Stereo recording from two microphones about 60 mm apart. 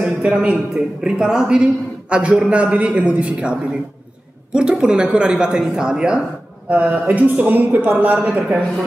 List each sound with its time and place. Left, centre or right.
0.0 s a woman's voice: centre